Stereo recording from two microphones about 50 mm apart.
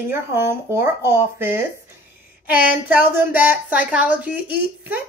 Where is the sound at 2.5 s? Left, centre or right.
Right.